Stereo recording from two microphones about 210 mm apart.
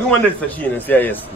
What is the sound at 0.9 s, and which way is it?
Speech, 10° left (ahead or behind).